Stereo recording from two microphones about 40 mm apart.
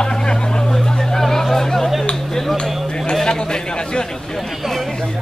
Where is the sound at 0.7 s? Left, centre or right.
Centre.